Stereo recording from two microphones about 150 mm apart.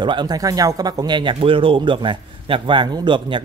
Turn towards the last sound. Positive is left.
turn(degrees=-30)  # may be behind; listen again after turning